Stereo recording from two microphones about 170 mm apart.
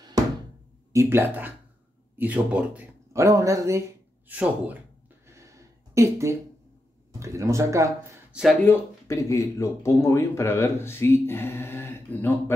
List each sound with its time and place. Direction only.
0.9 s speech: 15° right (ahead or behind)
5.3 s a sound: 15° right (ahead or behind)
7.2 s speech: 15° right (ahead or behind)
8.3 s speech: 5° right (ahead or behind)
8.6 s speech: 15° left (ahead or behind)